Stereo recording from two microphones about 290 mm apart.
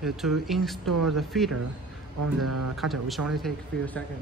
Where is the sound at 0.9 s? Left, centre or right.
Right.